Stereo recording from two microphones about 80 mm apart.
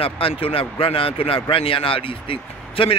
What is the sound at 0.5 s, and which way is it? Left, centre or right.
Speech, left.